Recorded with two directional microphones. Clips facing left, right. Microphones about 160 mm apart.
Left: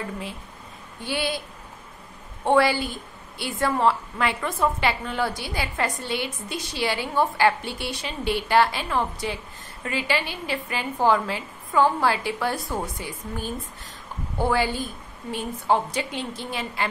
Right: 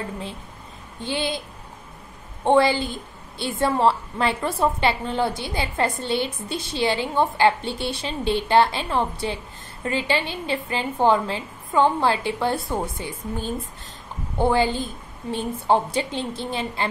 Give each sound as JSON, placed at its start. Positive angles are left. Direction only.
{"t": 1.0, "sound": "a woman's voice", "side_deg": -20}
{"t": 2.4, "sound": "a woman's voice", "side_deg": -25}